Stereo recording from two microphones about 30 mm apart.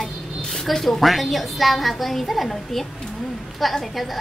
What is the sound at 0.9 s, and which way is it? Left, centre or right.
A woman's voice, centre.